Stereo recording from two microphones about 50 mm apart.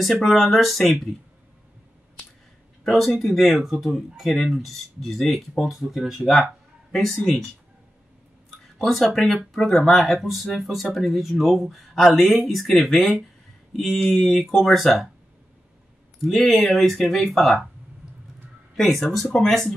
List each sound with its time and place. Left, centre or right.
0.0 s speech: centre
2.8 s speech: centre
8.8 s speech: centre
16.2 s speech: centre
18.8 s speech: centre
19.3 s speech: centre